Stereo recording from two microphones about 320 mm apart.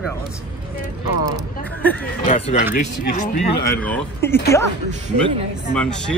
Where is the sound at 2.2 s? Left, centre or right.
Centre.